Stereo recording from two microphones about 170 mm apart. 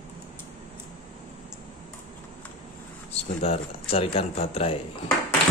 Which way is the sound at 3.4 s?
35° left (ahead or behind).